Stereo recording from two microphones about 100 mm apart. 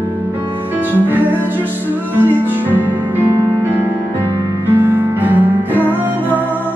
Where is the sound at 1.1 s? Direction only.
20° right (ahead or behind).